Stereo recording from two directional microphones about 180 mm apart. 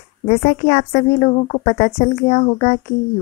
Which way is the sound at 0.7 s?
35° left (ahead or behind).